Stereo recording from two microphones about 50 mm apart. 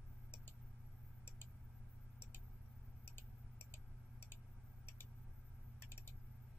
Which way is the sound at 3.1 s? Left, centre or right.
Left.